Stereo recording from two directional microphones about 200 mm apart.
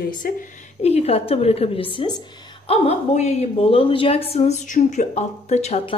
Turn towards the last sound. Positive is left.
turn(degrees=30)  # may be behind; listen again after turning